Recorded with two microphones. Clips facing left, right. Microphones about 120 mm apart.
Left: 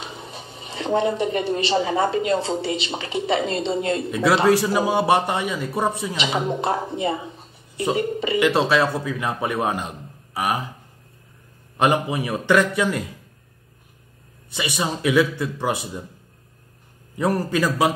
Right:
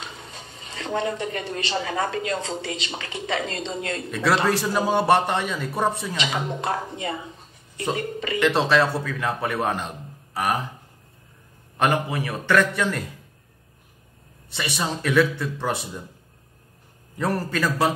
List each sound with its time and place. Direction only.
0.0 s a sound: 15° left (ahead or behind)
0.9 s a man's voice: 15° left (ahead or behind)
2.3 s speech: 35° left (ahead or behind)
3.3 s a man's voice: 15° left (ahead or behind)
11.7 s a man's voice: 15° left (ahead or behind)
14.5 s a man's voice: 10° left (ahead or behind)
17.2 s a man's voice: 15° left (ahead or behind)